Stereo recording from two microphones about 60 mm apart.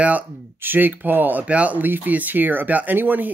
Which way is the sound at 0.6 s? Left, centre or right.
Right.